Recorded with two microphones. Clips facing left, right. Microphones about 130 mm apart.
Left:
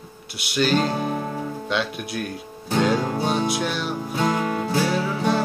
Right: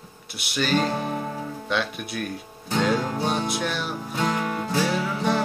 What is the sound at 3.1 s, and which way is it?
Music, centre (ahead or behind).